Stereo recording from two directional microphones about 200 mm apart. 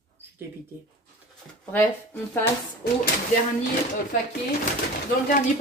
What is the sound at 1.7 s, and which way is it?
Speech, 10° left (ahead or behind).